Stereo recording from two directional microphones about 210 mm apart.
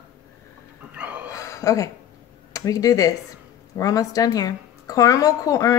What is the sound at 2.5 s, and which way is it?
A woman's voice, 15° left (ahead or behind).